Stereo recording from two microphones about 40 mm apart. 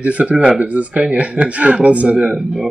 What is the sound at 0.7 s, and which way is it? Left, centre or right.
Speech, right.